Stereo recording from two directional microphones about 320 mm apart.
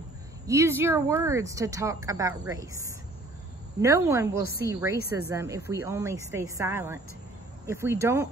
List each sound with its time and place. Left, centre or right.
0.5 s speech: centre